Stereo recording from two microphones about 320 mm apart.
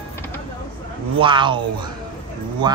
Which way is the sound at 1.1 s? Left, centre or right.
Centre.